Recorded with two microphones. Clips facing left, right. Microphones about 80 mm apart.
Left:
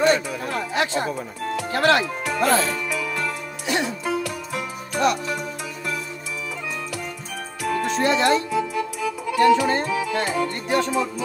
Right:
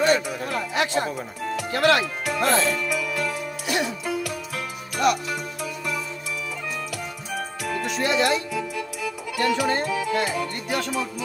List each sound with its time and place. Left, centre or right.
0.1 s chatter: left
1.6 s speech: left
2.5 s music: left
7.6 s music: left
8.2 s speech: left
9.3 s music: left